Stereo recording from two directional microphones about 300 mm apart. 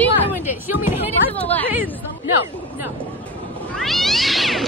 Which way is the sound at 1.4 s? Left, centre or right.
Centre.